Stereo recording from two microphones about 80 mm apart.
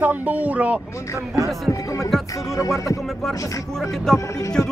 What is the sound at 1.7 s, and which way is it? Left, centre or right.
Speech, left.